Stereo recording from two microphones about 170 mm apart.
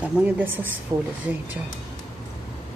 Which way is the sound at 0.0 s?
10° right (ahead or behind).